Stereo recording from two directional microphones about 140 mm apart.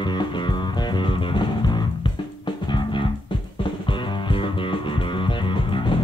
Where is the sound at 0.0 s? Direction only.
35° left (ahead or behind).